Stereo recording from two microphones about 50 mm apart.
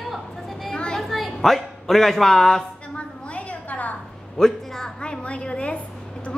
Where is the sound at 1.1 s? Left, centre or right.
Centre.